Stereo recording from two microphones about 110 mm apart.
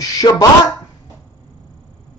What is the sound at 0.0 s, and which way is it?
Speech, 35° left (ahead or behind).